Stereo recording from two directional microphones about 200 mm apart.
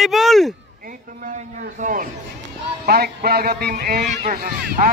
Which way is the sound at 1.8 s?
40° right (ahead or behind).